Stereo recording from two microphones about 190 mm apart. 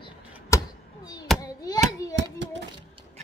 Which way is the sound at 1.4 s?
20° left (ahead or behind).